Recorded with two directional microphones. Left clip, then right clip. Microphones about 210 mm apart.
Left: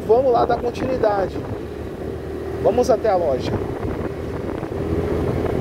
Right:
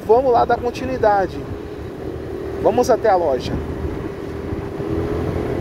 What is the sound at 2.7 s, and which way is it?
Speech, 20° right (ahead or behind).